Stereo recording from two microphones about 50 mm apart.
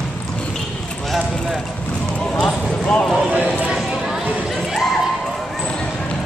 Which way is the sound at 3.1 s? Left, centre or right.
Right.